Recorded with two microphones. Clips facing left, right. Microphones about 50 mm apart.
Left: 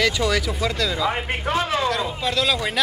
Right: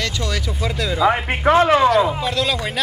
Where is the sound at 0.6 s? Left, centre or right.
Centre.